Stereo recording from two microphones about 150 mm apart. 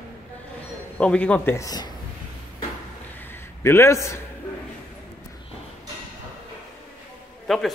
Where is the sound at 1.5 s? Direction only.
25° left (ahead or behind).